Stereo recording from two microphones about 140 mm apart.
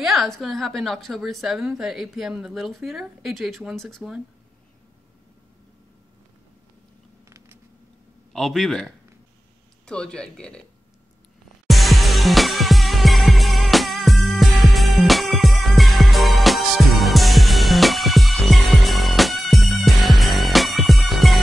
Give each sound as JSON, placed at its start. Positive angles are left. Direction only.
{"t": 0.0, "sound": "a woman's voice", "side_deg": 0}
{"t": 7.2, "sound": "a sound", "side_deg": -20}
{"t": 8.3, "sound": "a woman's voice", "side_deg": 0}
{"t": 11.6, "sound": "music", "side_deg": 0}